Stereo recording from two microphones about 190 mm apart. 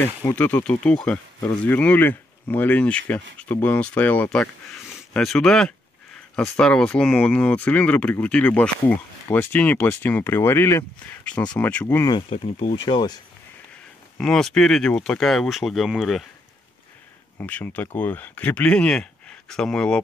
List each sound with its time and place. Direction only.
0.2 s speech: 10° left (ahead or behind)
12.1 s speech: 30° left (ahead or behind)
14.1 s speech: centre (ahead or behind)
17.4 s speech: 10° left (ahead or behind)